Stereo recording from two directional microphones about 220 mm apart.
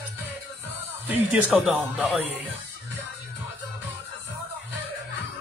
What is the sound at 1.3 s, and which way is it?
Speech, 5° right (ahead or behind).